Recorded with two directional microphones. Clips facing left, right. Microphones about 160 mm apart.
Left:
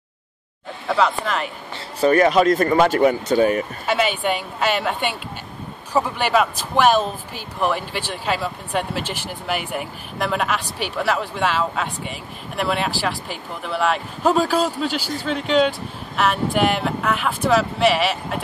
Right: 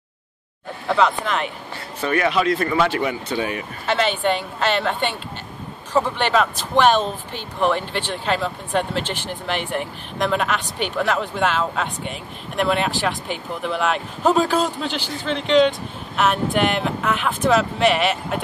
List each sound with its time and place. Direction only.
0.8 s speech: centre (ahead or behind)
2.0 s speech: 40° left (ahead or behind)
3.8 s a woman's voice: 10° left (ahead or behind)